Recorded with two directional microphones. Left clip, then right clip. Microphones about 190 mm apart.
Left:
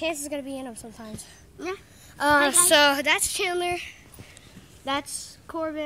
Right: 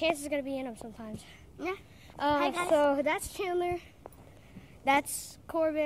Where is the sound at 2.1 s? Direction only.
40° left (ahead or behind).